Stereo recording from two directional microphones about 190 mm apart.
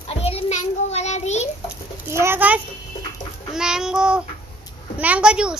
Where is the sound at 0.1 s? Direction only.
30° left (ahead or behind).